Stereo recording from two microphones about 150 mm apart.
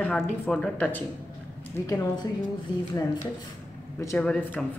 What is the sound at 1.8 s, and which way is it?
Speech, 25° left (ahead or behind).